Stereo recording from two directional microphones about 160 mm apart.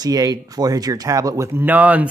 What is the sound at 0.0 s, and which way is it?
Speech, 25° right (ahead or behind).